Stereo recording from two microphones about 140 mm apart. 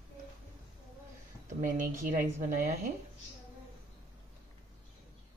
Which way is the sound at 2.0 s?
75° right (ahead or behind).